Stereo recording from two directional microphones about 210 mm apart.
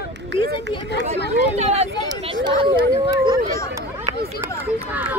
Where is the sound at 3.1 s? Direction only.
20° right (ahead or behind).